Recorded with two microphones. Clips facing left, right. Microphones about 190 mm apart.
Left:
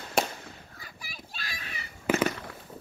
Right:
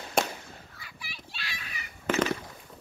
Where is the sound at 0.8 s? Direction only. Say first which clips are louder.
Left 1 dB; 45° left (ahead or behind).